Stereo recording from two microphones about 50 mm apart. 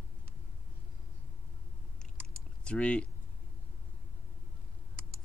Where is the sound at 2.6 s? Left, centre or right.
Left.